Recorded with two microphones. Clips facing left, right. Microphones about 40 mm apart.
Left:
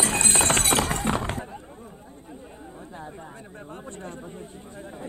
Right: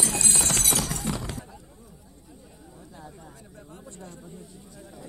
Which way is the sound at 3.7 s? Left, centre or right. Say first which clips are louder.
Left 6 dB; left.